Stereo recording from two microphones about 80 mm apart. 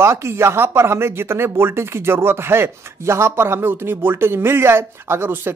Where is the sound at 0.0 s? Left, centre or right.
Right.